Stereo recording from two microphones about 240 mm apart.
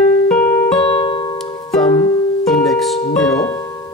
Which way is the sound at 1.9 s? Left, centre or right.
Centre.